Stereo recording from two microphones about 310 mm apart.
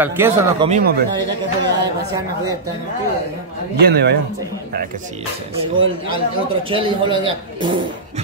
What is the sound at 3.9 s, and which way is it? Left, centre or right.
Speech, right.